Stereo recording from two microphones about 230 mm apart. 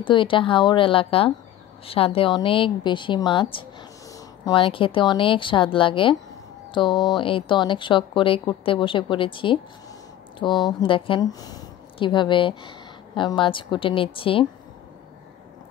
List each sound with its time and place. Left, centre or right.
0.0 s speech: left